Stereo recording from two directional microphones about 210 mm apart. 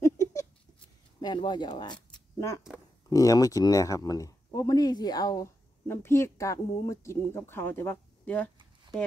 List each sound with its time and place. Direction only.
0.0 s a sound: 15° left (ahead or behind)
1.2 s speech: 20° left (ahead or behind)
3.1 s speech: 15° left (ahead or behind)